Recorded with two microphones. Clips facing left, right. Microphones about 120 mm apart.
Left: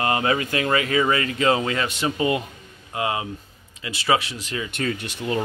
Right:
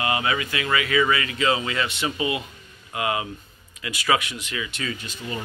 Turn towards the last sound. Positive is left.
turn(degrees=65)  # may be behind; listen again after turning